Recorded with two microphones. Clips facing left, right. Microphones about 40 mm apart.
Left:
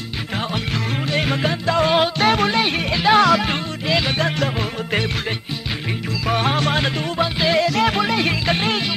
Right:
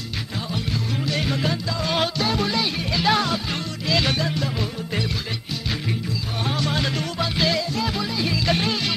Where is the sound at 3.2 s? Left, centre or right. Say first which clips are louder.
Left 9 dB; left.